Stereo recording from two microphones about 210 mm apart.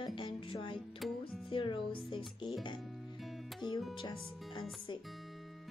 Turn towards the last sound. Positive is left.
turn(degrees=20)  # may be behind; listen again after turning